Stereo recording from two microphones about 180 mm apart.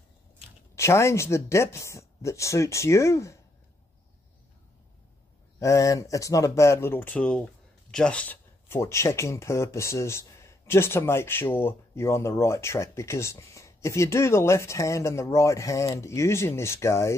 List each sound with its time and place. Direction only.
0.7 s speech: 15° left (ahead or behind)
5.6 s speech: 20° left (ahead or behind)